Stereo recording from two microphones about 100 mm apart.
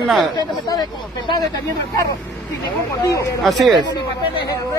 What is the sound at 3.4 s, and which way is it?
Speech, centre (ahead or behind).